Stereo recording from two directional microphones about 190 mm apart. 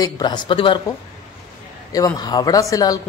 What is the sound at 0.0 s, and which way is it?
A woman's voice, 20° left (ahead or behind).